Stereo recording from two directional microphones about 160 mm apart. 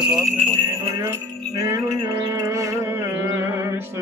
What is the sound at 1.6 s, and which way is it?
Music, 20° right (ahead or behind).